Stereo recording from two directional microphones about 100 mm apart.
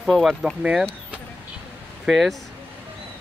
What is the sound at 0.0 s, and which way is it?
Speech, centre (ahead or behind).